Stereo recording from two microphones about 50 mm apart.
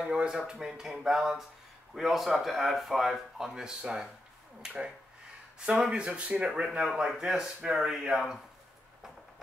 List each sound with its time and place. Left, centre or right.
0.0 s speech: centre
5.7 s speech: centre